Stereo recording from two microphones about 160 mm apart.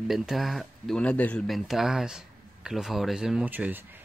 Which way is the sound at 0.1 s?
Centre (ahead or behind).